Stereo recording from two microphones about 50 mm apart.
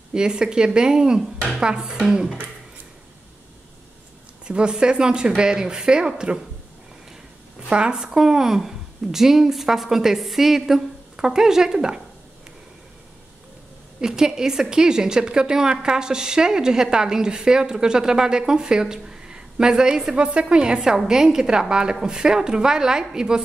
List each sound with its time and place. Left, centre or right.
0.1 s a woman's voice: centre
4.5 s a woman's voice: centre
7.7 s a woman's voice: centre
14.0 s a woman's voice: centre